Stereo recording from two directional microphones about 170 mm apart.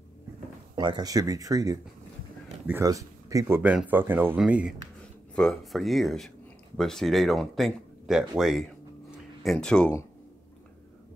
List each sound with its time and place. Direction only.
0.7 s speech: 25° right (ahead or behind)
2.8 s speech: 20° right (ahead or behind); by 9.9 s 5° left (ahead or behind)